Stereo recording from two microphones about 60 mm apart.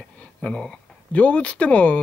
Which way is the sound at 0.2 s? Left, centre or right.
Centre.